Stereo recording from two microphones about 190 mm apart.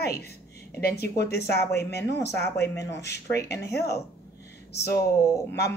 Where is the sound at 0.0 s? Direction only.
55° left (ahead or behind).